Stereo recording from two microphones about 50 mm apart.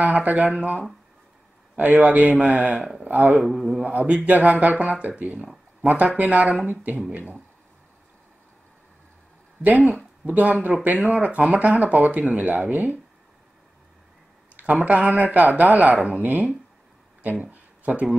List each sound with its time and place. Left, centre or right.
0.0 s speech: right
3.4 s didgeridoo: centre
3.8 s speech: right
9.6 s speech: right
14.6 s speech: right
17.2 s a sound: right